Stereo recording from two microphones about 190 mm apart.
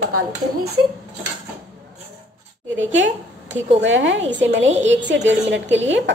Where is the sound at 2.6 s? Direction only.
85° right.